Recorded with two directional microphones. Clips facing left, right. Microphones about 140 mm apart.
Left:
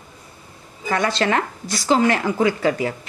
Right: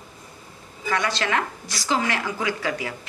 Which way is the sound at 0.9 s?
35° left (ahead or behind).